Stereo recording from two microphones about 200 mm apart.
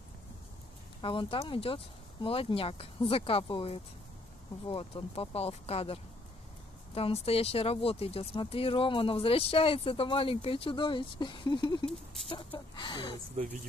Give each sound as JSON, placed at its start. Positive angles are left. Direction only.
{"t": 1.0, "sound": "speech", "side_deg": 25}